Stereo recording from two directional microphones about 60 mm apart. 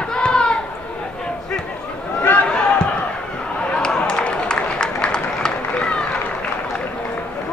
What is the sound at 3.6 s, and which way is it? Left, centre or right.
Run, centre.